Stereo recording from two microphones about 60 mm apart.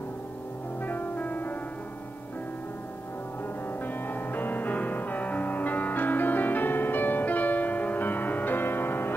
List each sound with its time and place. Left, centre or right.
0.8 s music: left
3.8 s music: left